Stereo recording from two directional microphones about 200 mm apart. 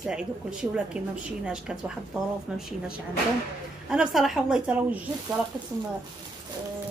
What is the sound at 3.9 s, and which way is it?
Speech, centre (ahead or behind).